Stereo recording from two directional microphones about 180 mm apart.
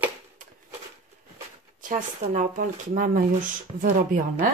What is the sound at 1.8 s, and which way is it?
Speech, 45° right (ahead or behind).